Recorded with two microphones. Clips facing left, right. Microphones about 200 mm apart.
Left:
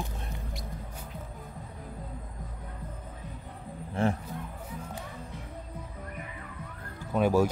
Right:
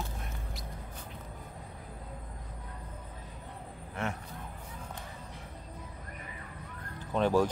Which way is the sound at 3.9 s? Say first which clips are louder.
Left 8 dB; 30° left (ahead or behind).